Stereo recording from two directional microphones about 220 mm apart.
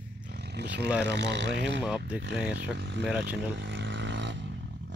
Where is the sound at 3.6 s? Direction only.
55° right (ahead or behind).